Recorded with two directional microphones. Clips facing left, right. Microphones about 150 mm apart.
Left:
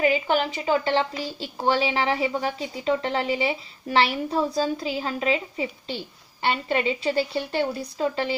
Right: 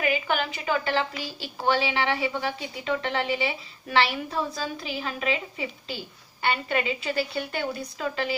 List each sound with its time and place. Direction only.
0.0 s a woman's voice: 30° left (ahead or behind)